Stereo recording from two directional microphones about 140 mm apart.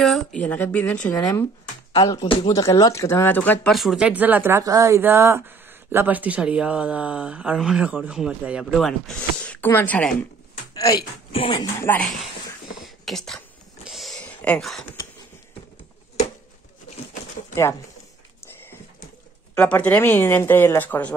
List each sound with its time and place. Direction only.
0.0 s speech: 5° left (ahead or behind)
1.3 s speech: 25° left (ahead or behind)
3.6 s speech: centre (ahead or behind)
10.7 s speech: 30° left (ahead or behind)
11.8 s speech: 15° left (ahead or behind)
12.8 s whispering: centre (ahead or behind)
13.8 s a sound: centre (ahead or behind)
19.5 s speech: 10° left (ahead or behind)